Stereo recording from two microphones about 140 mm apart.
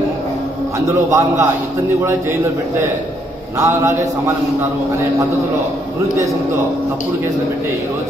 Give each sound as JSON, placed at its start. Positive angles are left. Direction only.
{"t": 1.1, "sound": "a man's voice", "side_deg": -20}
{"t": 3.5, "sound": "a man's voice", "side_deg": -20}